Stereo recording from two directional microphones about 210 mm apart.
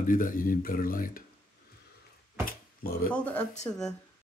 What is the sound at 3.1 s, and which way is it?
Speech, 10° left (ahead or behind).